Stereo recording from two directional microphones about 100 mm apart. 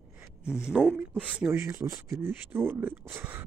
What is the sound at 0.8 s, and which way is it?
Speech, 20° right (ahead or behind).